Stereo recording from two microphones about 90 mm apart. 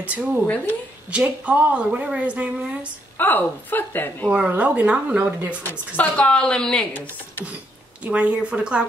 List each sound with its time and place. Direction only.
0.0 s speech: 15° right (ahead or behind)
3.2 s a woman's voice: 20° left (ahead or behind)
4.5 s speech: 15° right (ahead or behind)
5.9 s a woman's voice: 15° left (ahead or behind)
8.0 s speech: 15° right (ahead or behind)